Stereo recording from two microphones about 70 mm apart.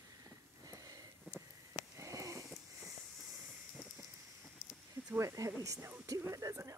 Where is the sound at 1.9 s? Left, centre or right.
Right.